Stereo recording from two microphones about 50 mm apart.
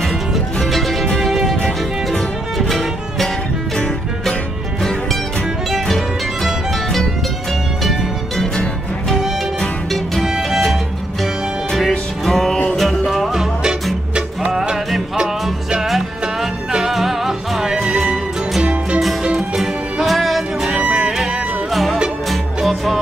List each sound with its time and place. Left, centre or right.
0.6 s music: centre
5.9 s music: centre
9.6 s music: centre
10.2 s music: centre
11.9 s music: centre
12.7 s music: centre
16.7 s music: centre
18.6 s music: right
19.2 s music: centre
20.7 s music: centre
22.6 s music: centre